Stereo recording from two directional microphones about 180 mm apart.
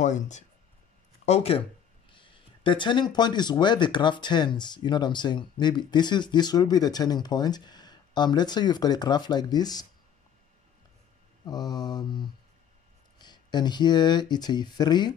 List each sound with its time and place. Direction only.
0.0 s speech: 40° left (ahead or behind); by 9.8 s 20° left (ahead or behind)
11.4 s speech: 20° left (ahead or behind)